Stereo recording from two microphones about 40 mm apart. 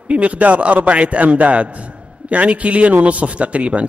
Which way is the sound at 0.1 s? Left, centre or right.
Right.